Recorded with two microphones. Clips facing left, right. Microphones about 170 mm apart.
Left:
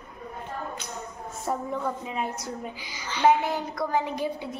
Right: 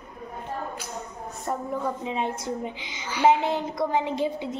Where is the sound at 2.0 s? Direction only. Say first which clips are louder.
Right 3 dB; 25° right (ahead or behind).